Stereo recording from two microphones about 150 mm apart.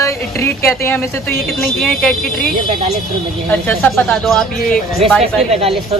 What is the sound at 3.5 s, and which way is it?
Speech, 10° left (ahead or behind).